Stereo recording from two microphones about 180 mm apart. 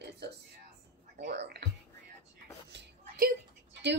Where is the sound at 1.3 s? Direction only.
70° right (ahead or behind).